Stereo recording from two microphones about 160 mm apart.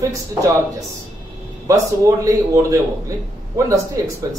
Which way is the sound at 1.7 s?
20° right (ahead or behind).